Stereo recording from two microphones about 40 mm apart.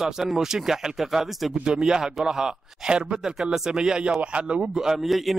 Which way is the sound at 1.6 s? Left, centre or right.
Centre.